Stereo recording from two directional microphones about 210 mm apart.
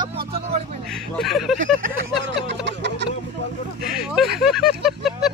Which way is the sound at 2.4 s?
55° right (ahead or behind).